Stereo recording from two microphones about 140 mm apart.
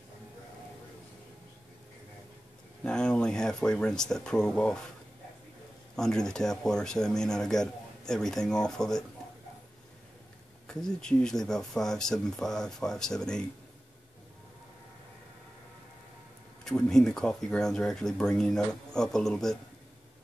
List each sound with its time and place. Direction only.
2.8 s speech: 5° left (ahead or behind)
5.9 s speech: 5° left (ahead or behind)
10.7 s speech: 5° left (ahead or behind)
16.6 s speech: 5° left (ahead or behind)